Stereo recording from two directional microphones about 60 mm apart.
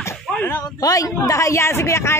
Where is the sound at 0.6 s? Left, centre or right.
Left.